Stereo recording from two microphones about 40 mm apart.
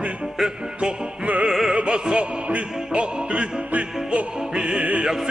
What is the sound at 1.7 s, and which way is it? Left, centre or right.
Music, right.